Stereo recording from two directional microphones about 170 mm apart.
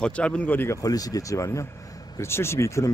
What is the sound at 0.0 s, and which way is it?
Speech, 5° left (ahead or behind).